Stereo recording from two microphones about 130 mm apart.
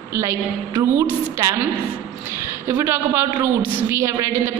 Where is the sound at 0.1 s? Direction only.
20° right (ahead or behind).